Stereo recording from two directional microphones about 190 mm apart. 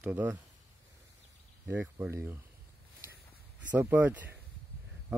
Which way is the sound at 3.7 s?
10° right (ahead or behind).